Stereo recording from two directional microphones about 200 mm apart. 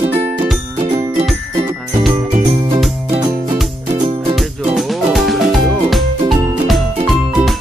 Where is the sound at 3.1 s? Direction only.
30° right (ahead or behind).